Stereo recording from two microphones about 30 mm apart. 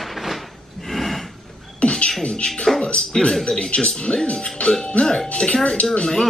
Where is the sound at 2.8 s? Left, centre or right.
Left.